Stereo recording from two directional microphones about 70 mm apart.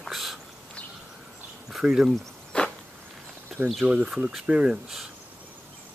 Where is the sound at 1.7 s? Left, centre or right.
Centre.